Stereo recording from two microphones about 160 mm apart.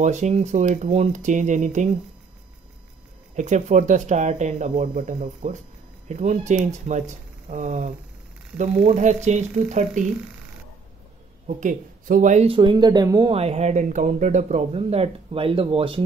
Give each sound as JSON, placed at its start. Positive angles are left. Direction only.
{"t": 0.0, "sound": "speech", "side_deg": -45}
{"t": 3.3, "sound": "speech", "side_deg": -50}
{"t": 11.4, "sound": "speech", "side_deg": -55}
{"t": 12.4, "sound": "speech", "side_deg": -30}
{"t": 13.3, "sound": "speech", "side_deg": -40}